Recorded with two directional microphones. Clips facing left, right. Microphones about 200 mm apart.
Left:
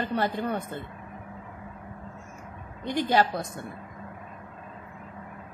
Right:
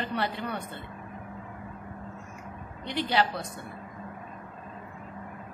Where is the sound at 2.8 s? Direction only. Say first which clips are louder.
Left 3 dB; 45° left (ahead or behind).